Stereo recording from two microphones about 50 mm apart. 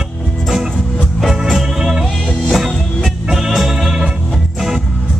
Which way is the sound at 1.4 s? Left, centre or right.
Centre.